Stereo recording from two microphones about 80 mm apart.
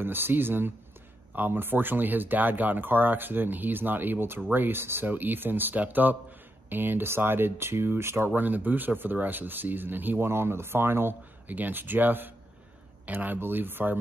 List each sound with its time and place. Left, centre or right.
0.0 s speech: right